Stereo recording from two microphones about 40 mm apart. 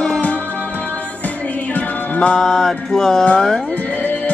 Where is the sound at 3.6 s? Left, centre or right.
Left.